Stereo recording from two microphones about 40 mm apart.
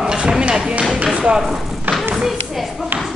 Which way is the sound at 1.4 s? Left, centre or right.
Centre.